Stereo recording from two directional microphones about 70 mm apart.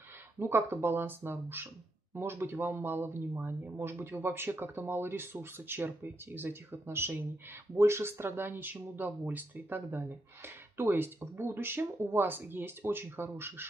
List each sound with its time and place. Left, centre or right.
0.4 s speech: right